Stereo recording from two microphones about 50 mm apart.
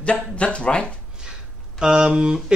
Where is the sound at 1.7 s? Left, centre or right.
Centre.